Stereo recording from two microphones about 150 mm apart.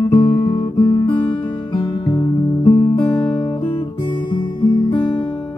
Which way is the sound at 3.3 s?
30° left (ahead or behind).